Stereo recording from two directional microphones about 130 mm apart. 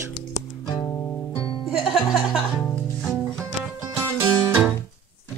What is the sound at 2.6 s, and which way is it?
Music, 10° left (ahead or behind).